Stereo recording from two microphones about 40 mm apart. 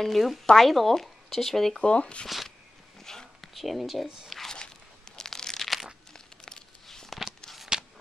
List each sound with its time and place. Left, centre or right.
0.0 s speech: centre
1.8 s speech: left
2.2 s speech: centre
3.0 s a sound: centre
3.3 s speech: centre
4.5 s crumpling: centre
7.7 s shuffle: centre